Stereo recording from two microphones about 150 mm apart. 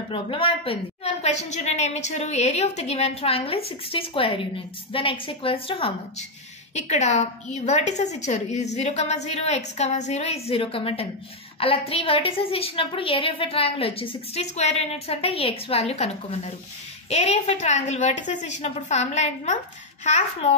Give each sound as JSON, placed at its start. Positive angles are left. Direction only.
{"t": 0.1, "sound": "a woman's voice", "side_deg": 35}